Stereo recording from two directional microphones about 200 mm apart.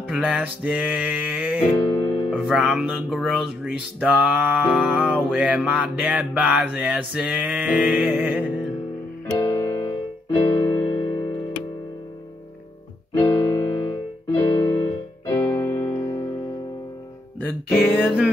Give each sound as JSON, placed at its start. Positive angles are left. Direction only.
{"t": 0.1, "sound": "music", "side_deg": -5}
{"t": 1.7, "sound": "music", "side_deg": 25}
{"t": 2.3, "sound": "music", "side_deg": 0}
{"t": 9.5, "sound": "keyboard", "side_deg": 20}
{"t": 11.0, "sound": "music", "side_deg": 20}
{"t": 13.1, "sound": "music", "side_deg": 15}
{"t": 15.3, "sound": "keyboard", "side_deg": 10}
{"t": 15.9, "sound": "music", "side_deg": 20}
{"t": 18.0, "sound": "music", "side_deg": 0}